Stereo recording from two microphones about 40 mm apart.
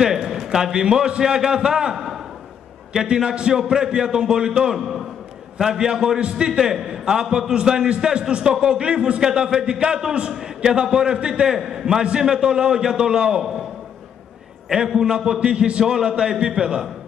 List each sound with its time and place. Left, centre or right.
0.0 s a man's voice: centre
4.7 s a man's voice: centre
5.6 s a man's voice: centre
11.4 s a man's voice: centre
15.0 s a man's voice: centre